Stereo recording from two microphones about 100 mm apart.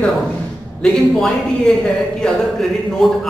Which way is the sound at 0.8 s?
5° left (ahead or behind).